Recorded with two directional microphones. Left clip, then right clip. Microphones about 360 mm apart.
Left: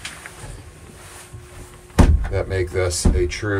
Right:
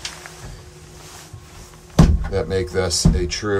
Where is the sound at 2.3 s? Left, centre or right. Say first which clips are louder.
Right 3 dB; centre.